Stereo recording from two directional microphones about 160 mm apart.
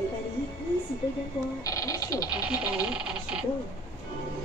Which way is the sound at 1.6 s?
20° left (ahead or behind).